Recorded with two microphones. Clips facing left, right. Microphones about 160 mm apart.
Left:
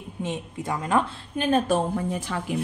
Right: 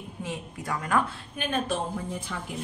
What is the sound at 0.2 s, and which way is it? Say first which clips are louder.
A woman's voice: left 5 dB; 20° left (ahead or behind).